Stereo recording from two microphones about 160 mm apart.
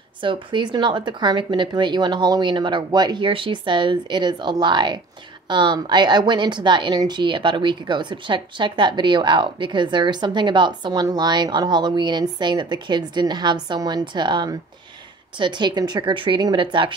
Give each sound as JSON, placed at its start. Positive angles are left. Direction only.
{"t": 0.2, "sound": "a woman's voice", "side_deg": -30}